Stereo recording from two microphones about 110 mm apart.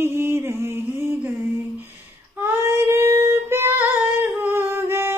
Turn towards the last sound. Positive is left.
turn(degrees=-25)  # may be behind; listen again after turning